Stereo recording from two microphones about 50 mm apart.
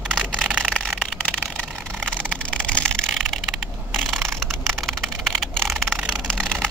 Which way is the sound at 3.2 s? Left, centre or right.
Centre.